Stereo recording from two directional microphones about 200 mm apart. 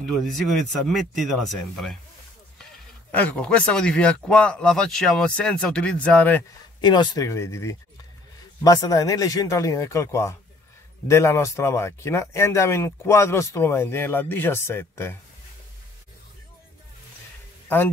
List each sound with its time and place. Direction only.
0.0 s speech: centre (ahead or behind)
3.1 s speech: 5° left (ahead or behind)
6.8 s speech: 20° left (ahead or behind)